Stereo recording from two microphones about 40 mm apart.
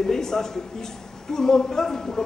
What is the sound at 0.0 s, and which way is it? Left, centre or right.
A woman's voice, centre.